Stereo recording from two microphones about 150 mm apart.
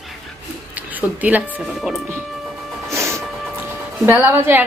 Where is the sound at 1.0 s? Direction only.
10° right (ahead or behind).